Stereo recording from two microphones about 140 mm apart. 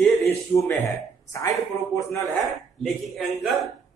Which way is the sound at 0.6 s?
20° left (ahead or behind).